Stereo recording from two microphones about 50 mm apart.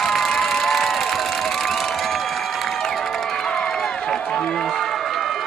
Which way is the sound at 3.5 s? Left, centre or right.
Centre.